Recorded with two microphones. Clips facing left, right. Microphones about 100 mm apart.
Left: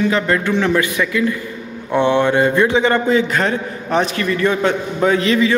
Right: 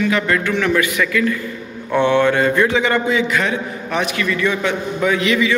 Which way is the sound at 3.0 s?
40° left (ahead or behind).